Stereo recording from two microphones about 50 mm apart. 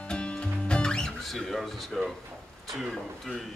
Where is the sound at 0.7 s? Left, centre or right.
Centre.